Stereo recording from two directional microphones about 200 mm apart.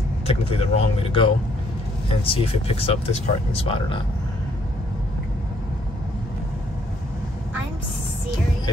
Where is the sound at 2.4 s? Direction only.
30° left (ahead or behind).